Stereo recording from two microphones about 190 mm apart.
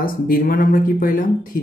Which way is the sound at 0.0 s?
50° left (ahead or behind).